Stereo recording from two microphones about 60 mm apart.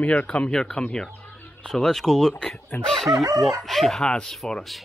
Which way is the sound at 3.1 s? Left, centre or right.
Right.